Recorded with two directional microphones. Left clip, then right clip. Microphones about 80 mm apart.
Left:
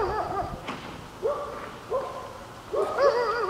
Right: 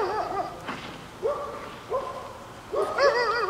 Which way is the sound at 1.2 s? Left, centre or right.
Right.